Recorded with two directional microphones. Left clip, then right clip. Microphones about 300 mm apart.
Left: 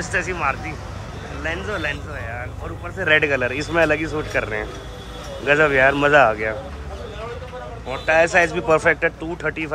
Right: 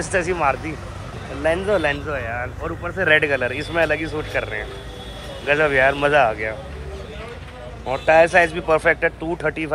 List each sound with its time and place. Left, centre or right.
0.0 s speech: centre
7.9 s speech: centre